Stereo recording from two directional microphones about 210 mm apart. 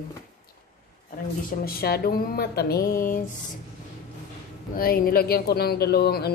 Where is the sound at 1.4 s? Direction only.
45° left (ahead or behind).